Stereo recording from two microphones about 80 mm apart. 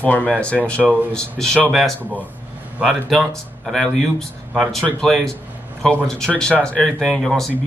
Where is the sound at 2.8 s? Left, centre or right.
Centre.